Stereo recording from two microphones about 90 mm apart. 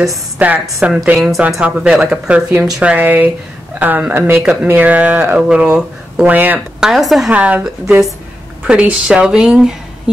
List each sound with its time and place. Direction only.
0.4 s speech: 15° right (ahead or behind)
6.3 s speech: 20° right (ahead or behind)
6.8 s a woman's voice: centre (ahead or behind)
7.2 s speech: 15° right (ahead or behind)